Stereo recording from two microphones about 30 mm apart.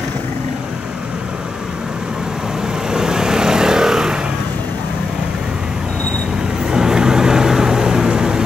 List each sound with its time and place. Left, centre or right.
2.9 s vehicle: right
6.7 s vehicle: right